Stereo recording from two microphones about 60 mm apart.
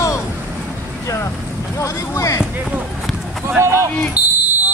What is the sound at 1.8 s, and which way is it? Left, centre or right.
Speech, left.